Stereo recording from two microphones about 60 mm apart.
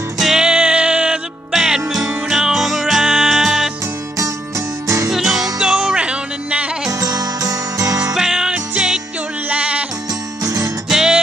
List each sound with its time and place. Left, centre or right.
0.2 s music: centre
4.8 s music: right
5.1 s music: centre
6.9 s music: right
8.1 s music: centre
10.4 s music: right
10.9 s music: centre